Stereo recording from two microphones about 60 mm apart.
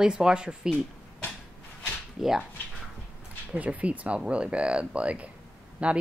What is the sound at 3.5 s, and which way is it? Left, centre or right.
Speech, right.